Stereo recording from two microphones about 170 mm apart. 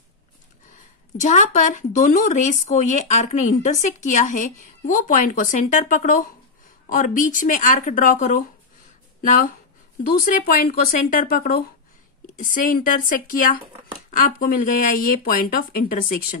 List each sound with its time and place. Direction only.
1.2 s speech: 45° left (ahead or behind)